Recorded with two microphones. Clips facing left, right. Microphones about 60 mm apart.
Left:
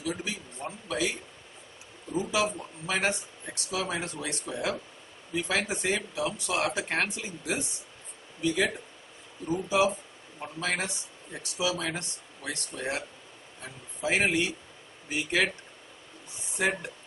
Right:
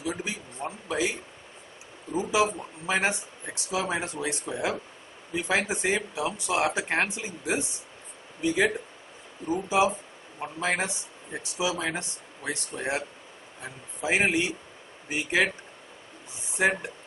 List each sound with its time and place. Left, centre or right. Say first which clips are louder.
0.0 s a sound: right 1 dB; centre
2.1 s a man's voice: right 3 dB; centre
16.5 s speech: right 4 dB; right